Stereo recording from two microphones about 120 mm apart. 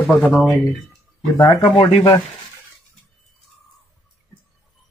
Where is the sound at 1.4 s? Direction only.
45° left (ahead or behind).